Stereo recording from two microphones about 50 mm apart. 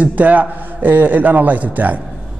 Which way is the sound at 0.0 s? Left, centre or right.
Right.